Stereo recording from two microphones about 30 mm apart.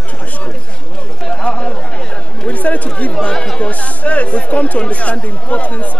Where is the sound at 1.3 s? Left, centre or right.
Left.